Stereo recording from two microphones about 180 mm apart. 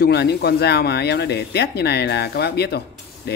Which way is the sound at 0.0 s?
65° left (ahead or behind).